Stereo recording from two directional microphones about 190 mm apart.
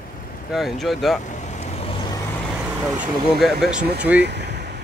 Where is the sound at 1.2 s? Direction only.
40° left (ahead or behind).